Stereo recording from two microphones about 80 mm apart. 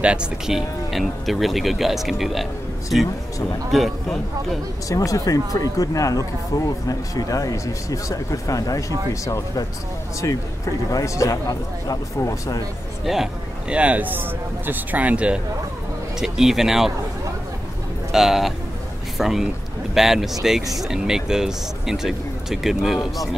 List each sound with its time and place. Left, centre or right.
0.0 s speech: centre
3.7 s speech: centre
4.8 s speech: left
10.9 s speech: left
13.0 s speech: centre
13.7 s speech: centre
18.1 s speech: centre